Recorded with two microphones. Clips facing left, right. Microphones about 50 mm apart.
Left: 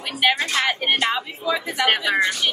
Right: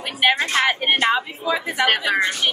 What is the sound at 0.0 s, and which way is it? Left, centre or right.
Speech, right.